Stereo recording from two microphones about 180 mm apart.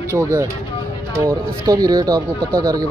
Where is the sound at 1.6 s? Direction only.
20° right (ahead or behind).